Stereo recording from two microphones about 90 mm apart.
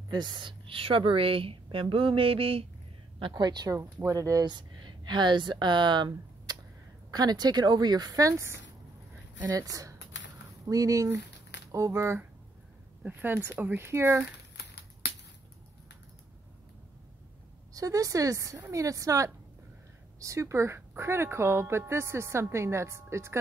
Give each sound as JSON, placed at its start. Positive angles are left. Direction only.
{"t": 0.1, "sound": "a woman's voice", "side_deg": -55}
{"t": 3.2, "sound": "speech", "side_deg": -60}
{"t": 4.5, "sound": "speech", "side_deg": -55}
{"t": 9.4, "sound": "speech", "side_deg": -45}
{"t": 17.7, "sound": "speech", "side_deg": -40}